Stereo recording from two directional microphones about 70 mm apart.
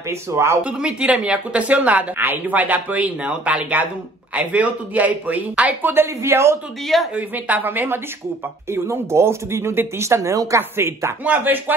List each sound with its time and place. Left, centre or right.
0.1 s speech: right
0.7 s speech: centre; by 6.6 s right
7.2 s speech: right
10.8 s speech: right
11.2 s speech: right